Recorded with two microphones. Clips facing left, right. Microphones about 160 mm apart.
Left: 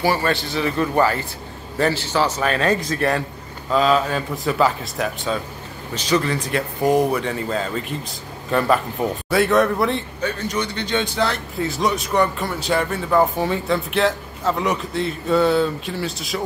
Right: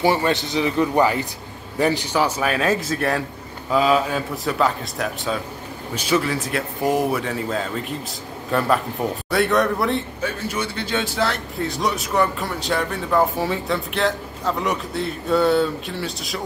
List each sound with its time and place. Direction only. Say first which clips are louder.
0.0 s a man's voice: right 1 dB; 20° right (ahead or behind); by 16.3 s centre (ahead or behind)